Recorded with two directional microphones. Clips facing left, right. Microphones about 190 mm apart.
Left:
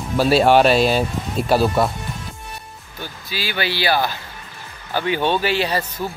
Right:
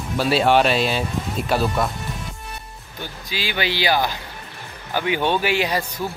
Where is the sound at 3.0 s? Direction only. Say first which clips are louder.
Even; 15° right (ahead or behind).